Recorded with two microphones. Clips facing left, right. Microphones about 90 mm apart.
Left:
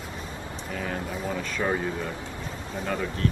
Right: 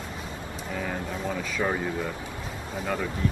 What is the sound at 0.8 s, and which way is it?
Speech, centre (ahead or behind).